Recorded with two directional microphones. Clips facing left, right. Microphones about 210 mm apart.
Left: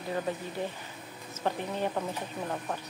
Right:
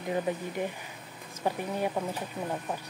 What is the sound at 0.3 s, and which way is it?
Speech, 15° right (ahead or behind).